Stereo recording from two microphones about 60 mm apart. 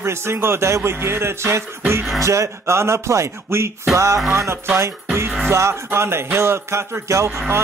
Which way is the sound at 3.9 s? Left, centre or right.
Right.